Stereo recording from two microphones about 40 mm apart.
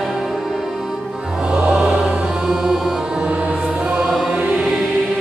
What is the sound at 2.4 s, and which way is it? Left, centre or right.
Music, centre.